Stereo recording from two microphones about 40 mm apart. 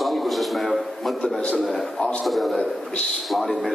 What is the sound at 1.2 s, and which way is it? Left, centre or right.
Speech, centre.